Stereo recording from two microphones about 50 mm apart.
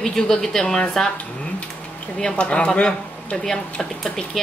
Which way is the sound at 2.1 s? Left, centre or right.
Centre.